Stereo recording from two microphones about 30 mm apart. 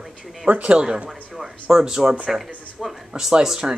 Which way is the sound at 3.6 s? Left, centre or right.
Right.